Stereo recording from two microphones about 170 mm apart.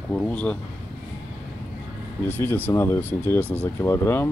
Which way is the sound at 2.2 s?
10° left (ahead or behind).